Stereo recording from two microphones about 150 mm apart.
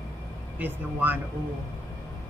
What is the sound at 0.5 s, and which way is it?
Speech, 10° right (ahead or behind).